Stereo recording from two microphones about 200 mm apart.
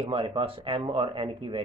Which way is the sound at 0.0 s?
25° right (ahead or behind).